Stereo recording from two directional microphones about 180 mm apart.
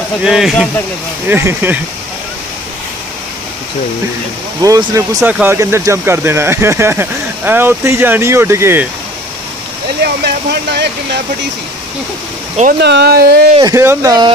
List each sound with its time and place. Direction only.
0.2 s speech: 5° right (ahead or behind)
1.3 s speech: 10° right (ahead or behind)
4.6 s speech: 20° right (ahead or behind)
10.0 s speech: 65° right (ahead or behind)
12.8 s speech: 65° right (ahead or behind)
13.6 s speech: 15° right (ahead or behind)